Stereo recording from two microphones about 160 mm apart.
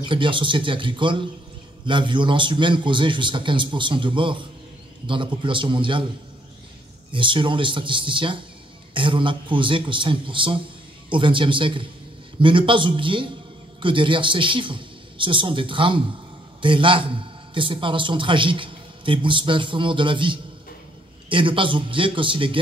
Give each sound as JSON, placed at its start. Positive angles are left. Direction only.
{"t": 0.0, "sound": "a man's voice", "side_deg": -30}
{"t": 7.1, "sound": "a man's voice", "side_deg": -30}